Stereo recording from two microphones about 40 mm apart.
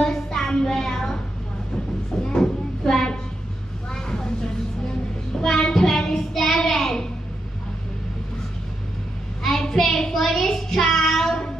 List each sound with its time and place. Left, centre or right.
0.0 s music: centre
2.2 s a sound: centre
3.9 s vehicle: centre
5.4 s child singing: centre
9.4 s child singing: centre